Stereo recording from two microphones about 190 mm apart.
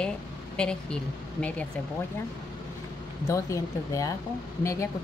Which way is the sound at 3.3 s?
15° left (ahead or behind).